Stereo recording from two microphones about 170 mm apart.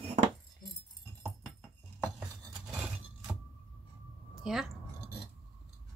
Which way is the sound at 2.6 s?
5° right (ahead or behind).